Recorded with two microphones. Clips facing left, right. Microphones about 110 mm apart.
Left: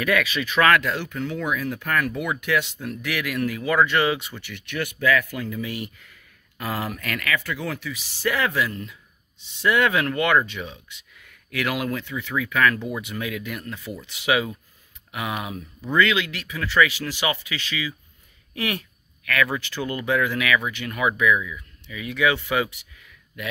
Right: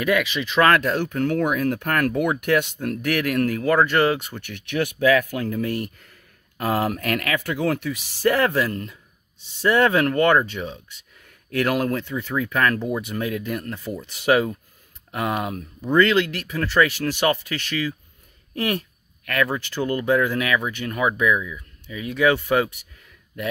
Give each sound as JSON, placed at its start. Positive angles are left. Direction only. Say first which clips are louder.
{"t": 0.0, "sound": "speech", "louder": "right 2 dB", "side_deg": -20}
{"t": 18.5, "sound": "speech", "louder": "right 4 dB", "side_deg": -40}